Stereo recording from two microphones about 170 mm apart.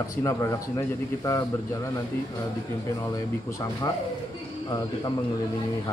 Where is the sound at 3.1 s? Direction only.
20° left (ahead or behind).